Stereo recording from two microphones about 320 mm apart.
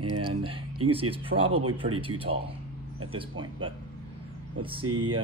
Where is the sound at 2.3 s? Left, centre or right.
Right.